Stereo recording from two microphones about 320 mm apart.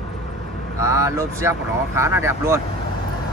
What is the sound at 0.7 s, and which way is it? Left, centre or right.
Speech, centre.